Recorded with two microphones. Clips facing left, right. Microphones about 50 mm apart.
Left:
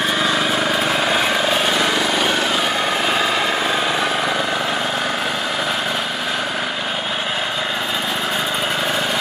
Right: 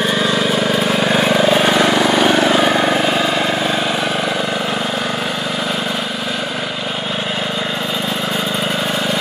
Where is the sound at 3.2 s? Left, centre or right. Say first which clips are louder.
Right 2 dB; centre.